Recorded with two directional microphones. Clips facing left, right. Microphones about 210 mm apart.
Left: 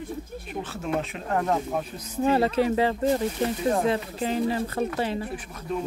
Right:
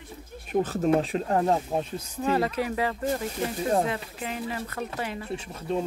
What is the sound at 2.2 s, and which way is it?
Speech, 30° left (ahead or behind).